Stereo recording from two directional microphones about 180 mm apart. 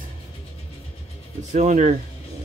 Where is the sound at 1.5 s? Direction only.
40° right (ahead or behind).